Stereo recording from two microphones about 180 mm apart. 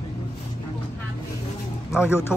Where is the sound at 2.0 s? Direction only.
15° left (ahead or behind).